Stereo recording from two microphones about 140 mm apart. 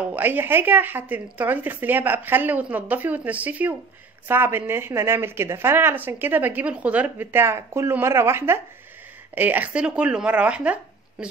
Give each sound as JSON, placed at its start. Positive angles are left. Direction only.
{"t": 0.0, "sound": "speech", "side_deg": -10}